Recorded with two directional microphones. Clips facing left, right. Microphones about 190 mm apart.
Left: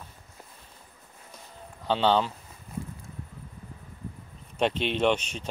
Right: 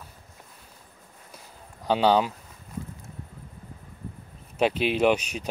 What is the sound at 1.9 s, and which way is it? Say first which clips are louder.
Speech: right 3 dB; 10° right (ahead or behind).